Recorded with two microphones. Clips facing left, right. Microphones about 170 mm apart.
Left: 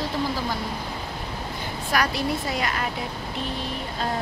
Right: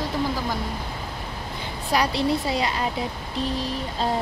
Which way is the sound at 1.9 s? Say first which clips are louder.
Right 3 dB; 30° right (ahead or behind).